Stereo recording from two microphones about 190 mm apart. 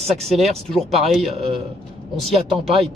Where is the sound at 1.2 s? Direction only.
30° right (ahead or behind).